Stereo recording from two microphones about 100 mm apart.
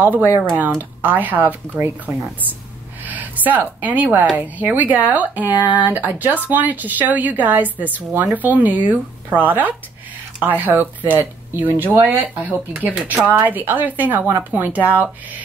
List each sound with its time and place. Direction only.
0.4 s speech: 15° right (ahead or behind)
3.0 s speech: 15° right (ahead or behind)